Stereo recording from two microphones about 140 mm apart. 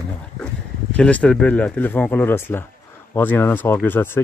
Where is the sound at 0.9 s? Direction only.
10° left (ahead or behind).